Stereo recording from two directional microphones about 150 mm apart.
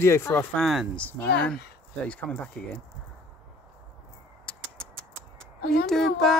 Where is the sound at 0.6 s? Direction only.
Centre (ahead or behind).